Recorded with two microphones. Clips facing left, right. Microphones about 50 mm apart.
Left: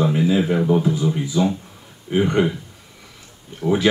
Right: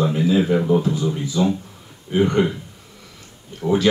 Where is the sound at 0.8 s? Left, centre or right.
Centre.